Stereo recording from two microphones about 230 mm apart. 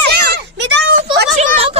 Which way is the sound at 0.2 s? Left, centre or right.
Right.